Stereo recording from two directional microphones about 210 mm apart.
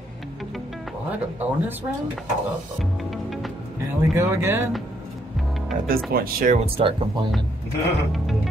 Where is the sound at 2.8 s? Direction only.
Centre (ahead or behind).